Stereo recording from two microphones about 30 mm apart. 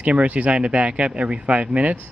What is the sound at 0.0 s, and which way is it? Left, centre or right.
Speech, right.